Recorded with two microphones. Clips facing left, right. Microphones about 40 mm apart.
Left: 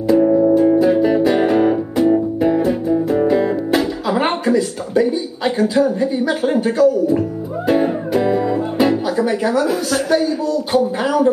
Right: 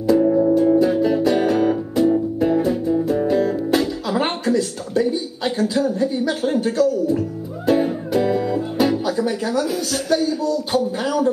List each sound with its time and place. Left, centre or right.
0.2 s music: centre